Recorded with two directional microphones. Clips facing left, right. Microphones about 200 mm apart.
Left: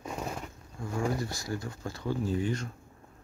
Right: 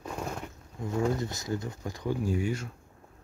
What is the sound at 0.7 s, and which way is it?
Speech, 20° right (ahead or behind).